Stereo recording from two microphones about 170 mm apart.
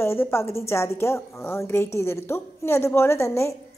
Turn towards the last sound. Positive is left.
turn(degrees=15)  # may be behind; listen again after turning